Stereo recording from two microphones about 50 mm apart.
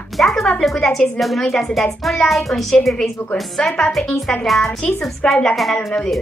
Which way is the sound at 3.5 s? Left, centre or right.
Centre.